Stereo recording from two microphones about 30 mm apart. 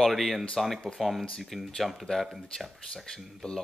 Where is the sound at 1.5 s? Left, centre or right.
Centre.